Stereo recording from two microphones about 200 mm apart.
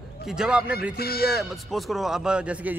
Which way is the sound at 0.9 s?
50° left (ahead or behind).